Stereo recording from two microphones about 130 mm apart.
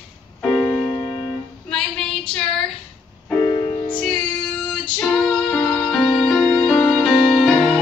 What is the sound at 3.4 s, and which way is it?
Music, 35° left (ahead or behind).